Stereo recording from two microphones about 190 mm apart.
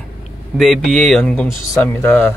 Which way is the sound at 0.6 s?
Centre (ahead or behind).